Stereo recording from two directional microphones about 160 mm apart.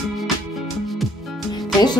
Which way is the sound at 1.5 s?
25° left (ahead or behind).